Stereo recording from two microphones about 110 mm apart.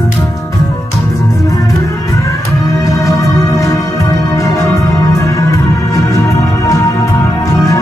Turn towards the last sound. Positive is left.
turn(degrees=30)  # may be behind; listen again after turning